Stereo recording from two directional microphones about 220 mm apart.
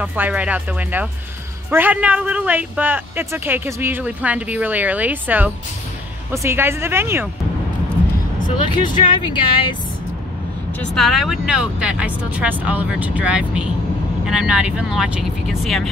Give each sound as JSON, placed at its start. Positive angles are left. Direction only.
{"t": 0.0, "sound": "speech", "side_deg": -5}
{"t": 8.8, "sound": "speech", "side_deg": 20}
{"t": 10.8, "sound": "speech", "side_deg": 0}